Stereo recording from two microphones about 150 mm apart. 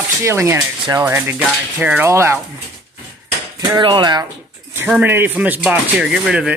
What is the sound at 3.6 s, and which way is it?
Hammer, 30° right (ahead or behind).